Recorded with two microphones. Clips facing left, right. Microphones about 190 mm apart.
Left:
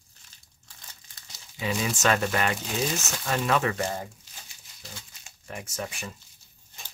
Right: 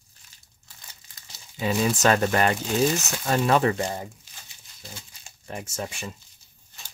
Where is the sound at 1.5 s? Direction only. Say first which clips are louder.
Right 5 dB; 40° right (ahead or behind).